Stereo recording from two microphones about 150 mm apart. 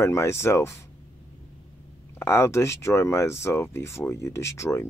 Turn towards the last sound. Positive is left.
turn(degrees=20)  # may be behind; listen again after turning